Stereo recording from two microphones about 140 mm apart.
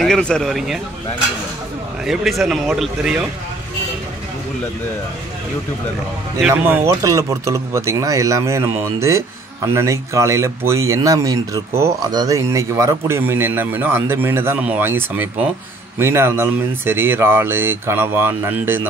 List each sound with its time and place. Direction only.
0.0 s a man's voice: 5° left (ahead or behind)
2.0 s a man's voice: centre (ahead or behind)
6.5 s a man's voice: 15° right (ahead or behind)